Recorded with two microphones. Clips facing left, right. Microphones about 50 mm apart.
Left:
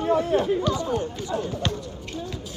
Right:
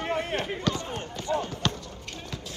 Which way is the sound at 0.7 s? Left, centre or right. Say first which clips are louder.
Left 8 dB; right.